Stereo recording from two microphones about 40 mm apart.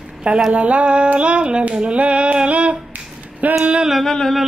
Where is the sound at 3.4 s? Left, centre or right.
Right.